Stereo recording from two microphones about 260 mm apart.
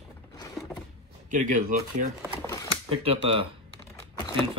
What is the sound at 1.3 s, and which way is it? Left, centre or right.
Speech, right.